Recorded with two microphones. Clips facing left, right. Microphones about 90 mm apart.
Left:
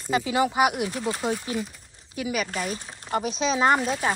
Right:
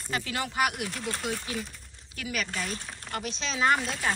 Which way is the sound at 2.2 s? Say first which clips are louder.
Left 5 dB; 15° left (ahead or behind).